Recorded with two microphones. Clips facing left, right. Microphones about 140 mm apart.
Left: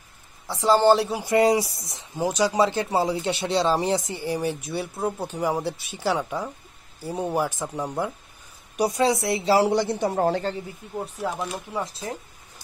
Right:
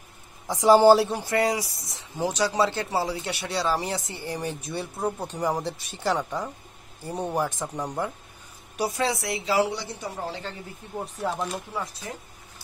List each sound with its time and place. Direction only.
0.5 s a man's voice: 15° right (ahead or behind)
0.9 s speech: centre (ahead or behind)
1.2 s speech: 20° left (ahead or behind)
2.1 s speech: 15° left (ahead or behind)
8.7 s speech: 15° left (ahead or behind)
9.7 s speech: 60° left (ahead or behind)
11.0 s speech: 5° left (ahead or behind)
11.7 s speech: 25° left (ahead or behind)